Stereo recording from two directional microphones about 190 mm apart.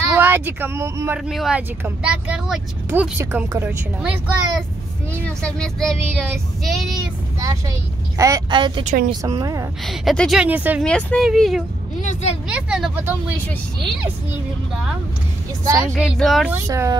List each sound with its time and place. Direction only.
0.1 s speech: 10° right (ahead or behind)
5.2 s child singing: 5° left (ahead or behind)
8.2 s a woman's voice: 20° right (ahead or behind)
8.8 s a woman's voice: 40° right (ahead or behind)
9.1 s a woman's voice: 20° right (ahead or behind)
9.8 s child singing: centre (ahead or behind)
10.8 s child singing: 5° left (ahead or behind)
12.0 s speech: 35° left (ahead or behind)
12.4 s child singing: 5° right (ahead or behind)
14.3 s child singing: 5° right (ahead or behind)
15.6 s speech: 15° right (ahead or behind)
15.9 s child singing: centre (ahead or behind)
16.6 s speech: 15° right (ahead or behind)